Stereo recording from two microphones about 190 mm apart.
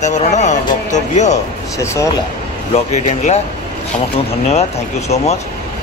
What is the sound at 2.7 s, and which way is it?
Speech, 35° left (ahead or behind).